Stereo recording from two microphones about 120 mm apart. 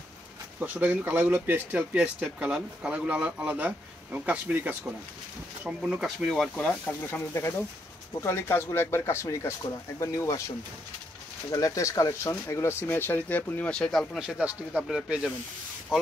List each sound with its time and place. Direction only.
0.6 s speech: 10° right (ahead or behind)
6.5 s speech: 15° left (ahead or behind)
11.5 s speech: 30° left (ahead or behind); by 15.3 s 5° right (ahead or behind)